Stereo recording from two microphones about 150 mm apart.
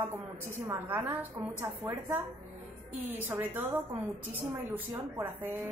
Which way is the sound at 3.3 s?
15° right (ahead or behind).